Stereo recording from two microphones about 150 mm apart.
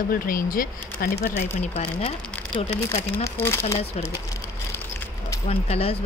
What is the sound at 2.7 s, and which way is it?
Speech, 15° left (ahead or behind).